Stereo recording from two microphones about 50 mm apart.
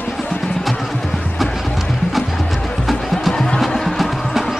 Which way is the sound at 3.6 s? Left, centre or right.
Centre.